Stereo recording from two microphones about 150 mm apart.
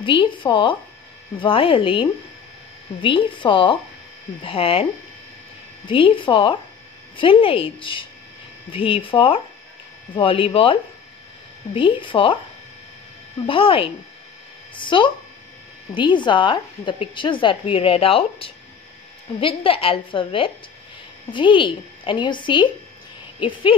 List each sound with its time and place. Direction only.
0.0 s a woman's voice: 35° left (ahead or behind)
5.9 s a woman's voice: 35° left (ahead or behind)
13.5 s a woman's voice: 35° left (ahead or behind)